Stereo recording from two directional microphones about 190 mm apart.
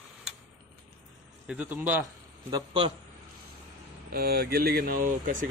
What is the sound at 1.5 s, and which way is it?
Speech, 10° right (ahead or behind).